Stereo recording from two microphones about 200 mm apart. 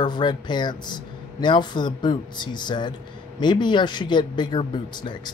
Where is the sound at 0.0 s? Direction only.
20° left (ahead or behind).